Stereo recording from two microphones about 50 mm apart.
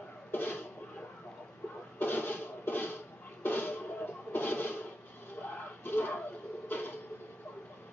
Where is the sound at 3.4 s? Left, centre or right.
Left.